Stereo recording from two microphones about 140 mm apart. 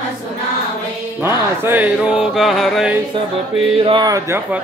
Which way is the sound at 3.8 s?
30° right (ahead or behind).